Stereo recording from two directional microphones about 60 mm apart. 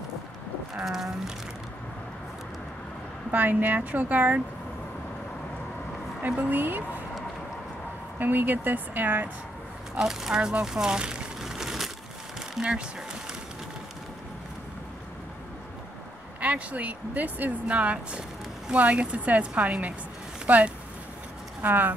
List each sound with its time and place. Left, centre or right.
0.7 s speech: centre
3.3 s speech: right
6.2 s speech: right
8.2 s speech: right
9.9 s speech: centre
12.5 s speech: centre
16.3 s speech: right